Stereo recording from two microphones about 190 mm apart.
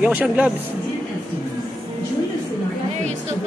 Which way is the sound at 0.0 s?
5° right (ahead or behind).